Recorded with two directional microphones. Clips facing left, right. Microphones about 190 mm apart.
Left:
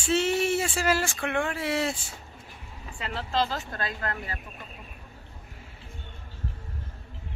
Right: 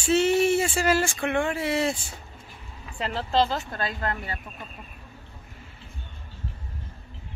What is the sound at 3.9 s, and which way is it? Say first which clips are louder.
Speech: right 3 dB; 30° right (ahead or behind).